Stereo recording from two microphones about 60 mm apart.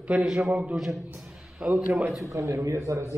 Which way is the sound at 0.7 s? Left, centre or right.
Centre.